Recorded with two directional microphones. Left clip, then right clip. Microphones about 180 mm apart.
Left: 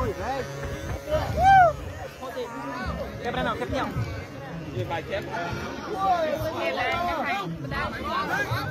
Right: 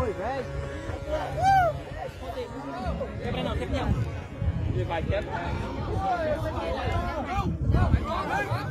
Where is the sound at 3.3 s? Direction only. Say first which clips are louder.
Left 4 dB; 30° left (ahead or behind).